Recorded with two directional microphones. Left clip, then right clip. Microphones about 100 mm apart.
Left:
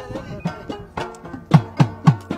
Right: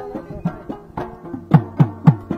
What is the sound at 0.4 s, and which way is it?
Music, 15° left (ahead or behind).